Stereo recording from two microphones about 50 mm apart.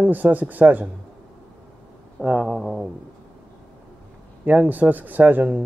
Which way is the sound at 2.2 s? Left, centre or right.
Right.